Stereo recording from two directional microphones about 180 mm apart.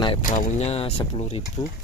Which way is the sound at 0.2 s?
45° left (ahead or behind).